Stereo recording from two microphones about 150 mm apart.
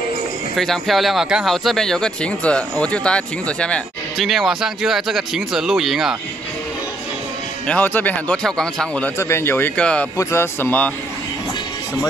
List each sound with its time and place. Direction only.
0.6 s speech: centre (ahead or behind)
7.6 s speech: 10° left (ahead or behind)
9.2 s speech: 15° left (ahead or behind)